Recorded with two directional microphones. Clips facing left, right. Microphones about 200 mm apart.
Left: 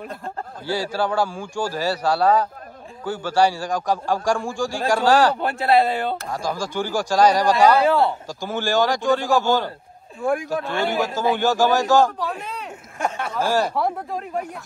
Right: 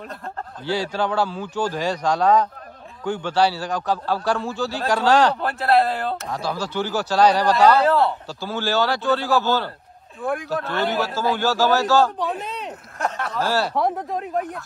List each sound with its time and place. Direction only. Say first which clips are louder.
0.7 s a man's voice: even; 10° left (ahead or behind)
6.4 s a man's voice: even; 10° left (ahead or behind)
7.8 s speech: even; centre (ahead or behind)
8.4 s a man's voice: left 2 dB; 15° left (ahead or behind)
13.0 s speech: left 1 dB; centre (ahead or behind)
13.4 s a man's voice: left 2 dB; 15° left (ahead or behind)
13.7 s speech: right 1 dB; centre (ahead or behind)